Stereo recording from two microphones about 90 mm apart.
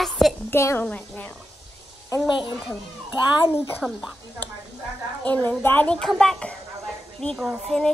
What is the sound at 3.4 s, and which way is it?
Speech, 25° left (ahead or behind).